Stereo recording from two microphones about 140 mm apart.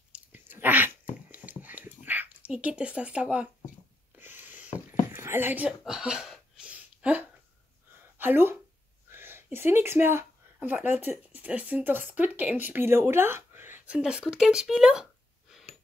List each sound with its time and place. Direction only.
0.1 s dog: 15° right (ahead or behind)
2.0 s speech: 10° right (ahead or behind)
4.2 s a sound: 15° right (ahead or behind)
8.2 s speech: 15° right (ahead or behind)
9.1 s a sound: 15° right (ahead or behind)
11.4 s speech: 10° right (ahead or behind)